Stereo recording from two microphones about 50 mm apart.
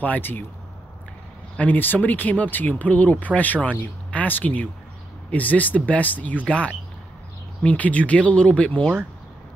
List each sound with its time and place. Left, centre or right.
0.2 s speech: left
1.6 s speech: left